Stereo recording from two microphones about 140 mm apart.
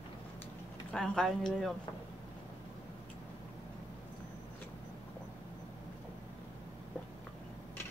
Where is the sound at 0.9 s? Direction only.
5° left (ahead or behind).